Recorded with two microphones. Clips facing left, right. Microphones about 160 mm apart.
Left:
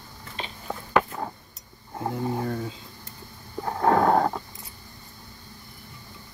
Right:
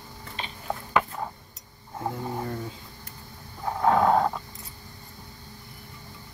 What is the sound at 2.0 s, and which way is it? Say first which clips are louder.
Speech: left 3 dB; 15° left (ahead or behind).